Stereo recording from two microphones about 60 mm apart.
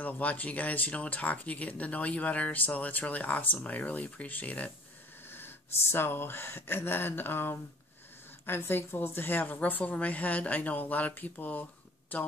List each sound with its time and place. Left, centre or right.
0.0 s speech: left
5.3 s speech: left